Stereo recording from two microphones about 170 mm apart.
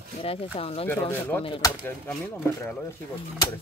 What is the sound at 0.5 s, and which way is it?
Speech, 35° left (ahead or behind).